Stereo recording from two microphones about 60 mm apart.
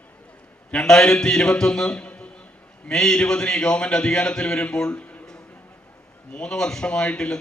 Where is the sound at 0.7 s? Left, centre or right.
Centre.